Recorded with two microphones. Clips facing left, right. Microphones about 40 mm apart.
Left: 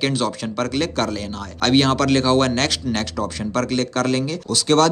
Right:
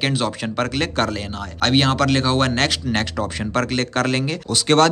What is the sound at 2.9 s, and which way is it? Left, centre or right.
A man's voice, right.